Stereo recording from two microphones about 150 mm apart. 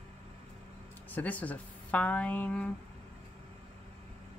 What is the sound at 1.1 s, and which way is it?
Speech, 10° left (ahead or behind).